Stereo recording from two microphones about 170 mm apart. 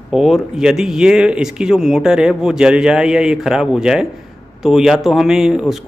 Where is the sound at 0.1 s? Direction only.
5° right (ahead or behind).